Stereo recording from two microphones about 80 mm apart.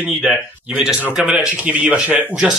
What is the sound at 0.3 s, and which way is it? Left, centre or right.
Speech, centre.